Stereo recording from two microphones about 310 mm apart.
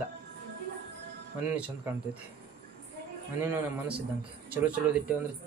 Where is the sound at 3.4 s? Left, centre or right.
Centre.